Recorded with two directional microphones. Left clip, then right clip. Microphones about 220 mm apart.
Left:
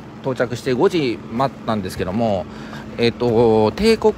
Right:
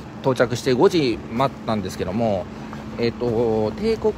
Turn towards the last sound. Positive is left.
turn(degrees=40)  # may be behind; listen again after turning